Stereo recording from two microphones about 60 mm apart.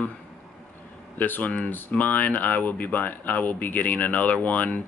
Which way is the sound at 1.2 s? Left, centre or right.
Left.